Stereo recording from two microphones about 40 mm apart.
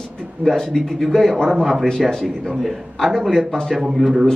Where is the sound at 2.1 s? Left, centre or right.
Centre.